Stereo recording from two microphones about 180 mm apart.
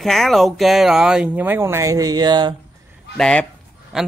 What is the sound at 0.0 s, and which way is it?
Speech, centre (ahead or behind).